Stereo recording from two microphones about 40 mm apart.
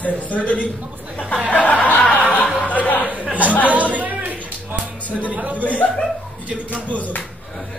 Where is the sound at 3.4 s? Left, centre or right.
Left.